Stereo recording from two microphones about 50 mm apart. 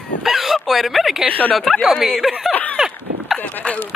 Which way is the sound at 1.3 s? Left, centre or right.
Left.